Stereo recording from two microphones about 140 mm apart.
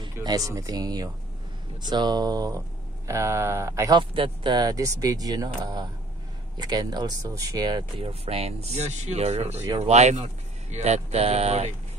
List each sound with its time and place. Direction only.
0.0 s speech: 30° right (ahead or behind)
4.0 s speech: 35° right (ahead or behind)
8.0 s speech: 45° right (ahead or behind)